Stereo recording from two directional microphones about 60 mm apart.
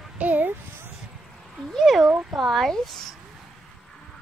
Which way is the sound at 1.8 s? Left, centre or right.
Centre.